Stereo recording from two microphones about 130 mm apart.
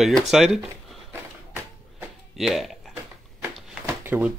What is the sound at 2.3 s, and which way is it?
Speech, centre (ahead or behind).